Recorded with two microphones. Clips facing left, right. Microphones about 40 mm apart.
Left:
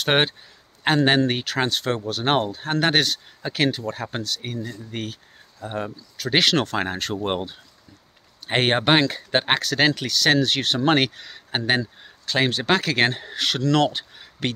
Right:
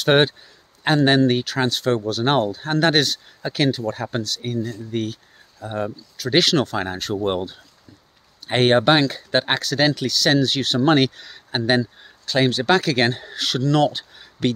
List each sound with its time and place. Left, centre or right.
0.1 s speech: left
7.2 s speech: left
9.6 s speech: left
13.6 s speech: left
14.1 s a sound: left